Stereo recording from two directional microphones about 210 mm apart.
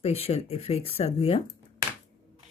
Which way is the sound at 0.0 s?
30° left (ahead or behind).